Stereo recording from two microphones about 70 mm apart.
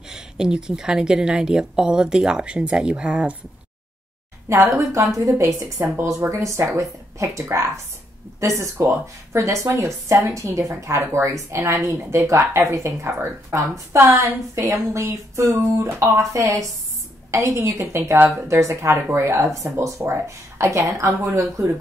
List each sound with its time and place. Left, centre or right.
0.1 s a woman's voice: centre
4.7 s a woman's voice: right
14.0 s a woman's voice: right